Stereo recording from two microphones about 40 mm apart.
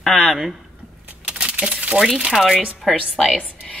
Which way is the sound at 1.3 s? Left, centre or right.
Right.